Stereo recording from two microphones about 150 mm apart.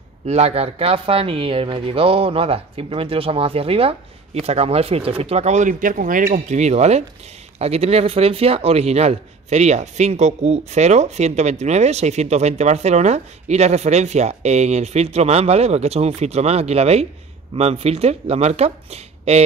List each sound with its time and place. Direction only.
0.3 s speech: 45° right (ahead or behind)